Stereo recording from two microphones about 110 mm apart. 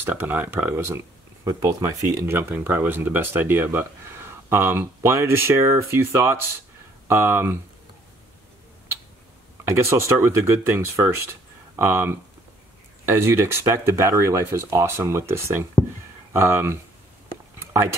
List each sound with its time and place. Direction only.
0.0 s speech: 20° right (ahead or behind)
9.7 s speech: 25° right (ahead or behind)
17.6 s a sound: 25° right (ahead or behind)